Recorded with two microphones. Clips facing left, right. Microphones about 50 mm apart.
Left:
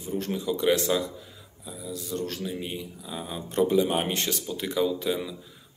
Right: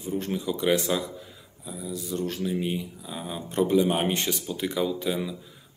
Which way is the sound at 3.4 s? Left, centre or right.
Centre.